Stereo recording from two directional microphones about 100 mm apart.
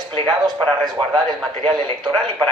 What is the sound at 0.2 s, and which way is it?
Speech, 45° right (ahead or behind).